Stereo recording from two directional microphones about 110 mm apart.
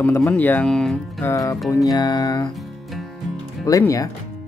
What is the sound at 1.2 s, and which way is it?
Music, 30° left (ahead or behind).